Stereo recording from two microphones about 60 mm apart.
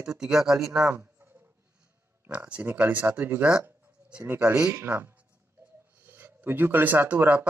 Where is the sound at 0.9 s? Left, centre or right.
Right.